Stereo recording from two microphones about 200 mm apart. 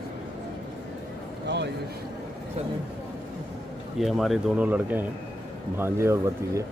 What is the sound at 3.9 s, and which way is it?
Speech, centre (ahead or behind).